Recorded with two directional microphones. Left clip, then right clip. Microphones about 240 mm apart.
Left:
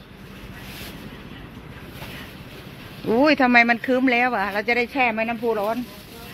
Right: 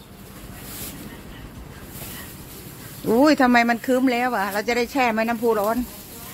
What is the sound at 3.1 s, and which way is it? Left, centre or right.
Speech, centre.